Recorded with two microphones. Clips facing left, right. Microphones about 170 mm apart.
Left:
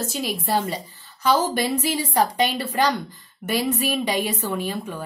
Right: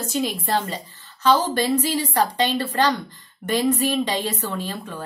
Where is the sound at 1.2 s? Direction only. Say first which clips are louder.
Right 2 dB; 10° left (ahead or behind).